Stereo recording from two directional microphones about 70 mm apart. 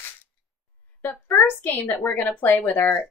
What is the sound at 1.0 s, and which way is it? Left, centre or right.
Speech, left.